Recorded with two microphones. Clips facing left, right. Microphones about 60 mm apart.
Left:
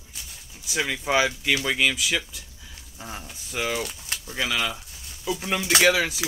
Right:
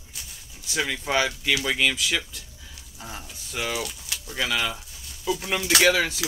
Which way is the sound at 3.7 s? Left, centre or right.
Left.